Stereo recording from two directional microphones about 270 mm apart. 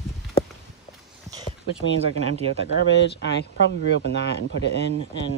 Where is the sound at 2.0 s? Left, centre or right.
Left.